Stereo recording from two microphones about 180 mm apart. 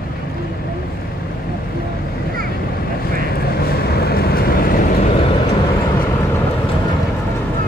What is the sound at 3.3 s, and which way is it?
Vehicle, 60° left (ahead or behind).